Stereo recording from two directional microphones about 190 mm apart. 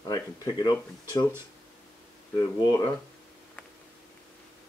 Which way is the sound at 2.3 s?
20° left (ahead or behind).